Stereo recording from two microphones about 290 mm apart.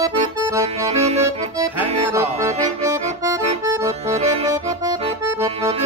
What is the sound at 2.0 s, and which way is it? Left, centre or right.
Accordion, centre.